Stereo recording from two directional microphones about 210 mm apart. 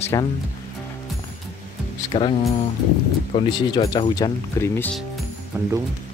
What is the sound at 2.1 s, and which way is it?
Speech, 25° left (ahead or behind).